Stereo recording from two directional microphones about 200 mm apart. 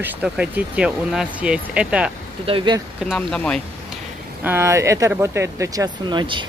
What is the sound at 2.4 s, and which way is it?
Speech, 25° right (ahead or behind).